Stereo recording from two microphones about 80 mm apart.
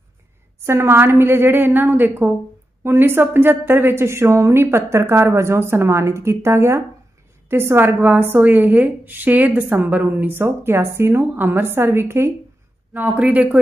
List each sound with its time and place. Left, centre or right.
0.7 s a woman's voice: right
13.1 s a woman's voice: centre